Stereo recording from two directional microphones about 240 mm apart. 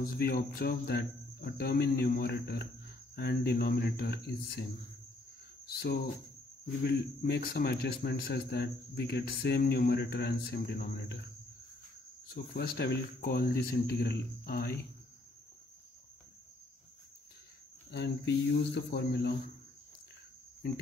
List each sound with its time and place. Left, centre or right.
0.0 s a man's voice: left
5.7 s a man's voice: left
12.3 s a man's voice: left
17.9 s speech: left